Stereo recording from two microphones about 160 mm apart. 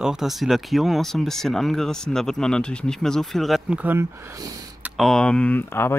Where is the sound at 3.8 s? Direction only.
15° right (ahead or behind).